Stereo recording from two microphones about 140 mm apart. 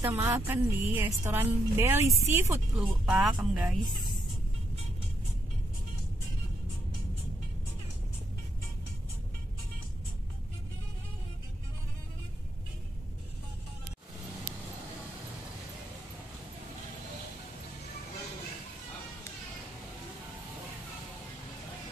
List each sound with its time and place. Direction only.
0.0 s a woman's voice: 15° right (ahead or behind)
2.7 s speech: 5° right (ahead or behind)